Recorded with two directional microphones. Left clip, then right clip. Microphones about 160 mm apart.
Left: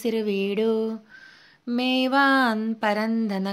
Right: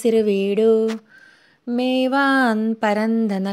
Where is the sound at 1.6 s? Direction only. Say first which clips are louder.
Right 4 dB; 20° right (ahead or behind).